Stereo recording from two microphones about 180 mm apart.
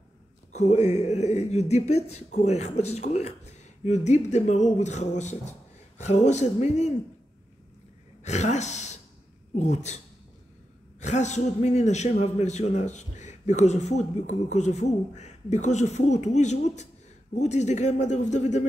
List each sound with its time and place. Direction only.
0.5 s a man's voice: 40° left (ahead or behind)
8.2 s a man's voice: 40° left (ahead or behind)